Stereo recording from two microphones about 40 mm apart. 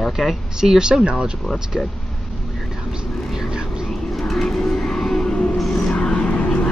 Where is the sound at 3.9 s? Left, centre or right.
Centre.